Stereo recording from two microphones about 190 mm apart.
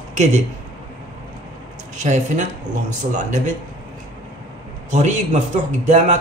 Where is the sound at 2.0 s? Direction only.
40° right (ahead or behind).